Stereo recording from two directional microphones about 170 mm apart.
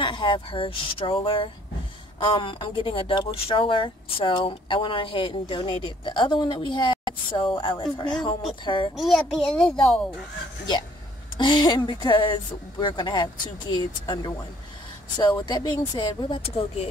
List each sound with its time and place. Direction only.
0.0 s speech: 30° left (ahead or behind)
8.9 s speech: centre (ahead or behind)
11.3 s speech: 25° left (ahead or behind)